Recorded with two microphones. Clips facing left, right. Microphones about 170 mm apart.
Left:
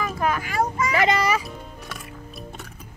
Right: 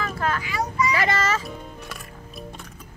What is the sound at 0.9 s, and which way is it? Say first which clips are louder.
Speech: left 7 dB; 15° left (ahead or behind).